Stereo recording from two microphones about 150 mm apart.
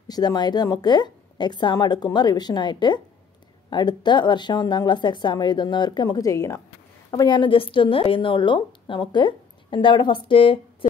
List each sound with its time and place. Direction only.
0.1 s a woman's voice: 25° left (ahead or behind)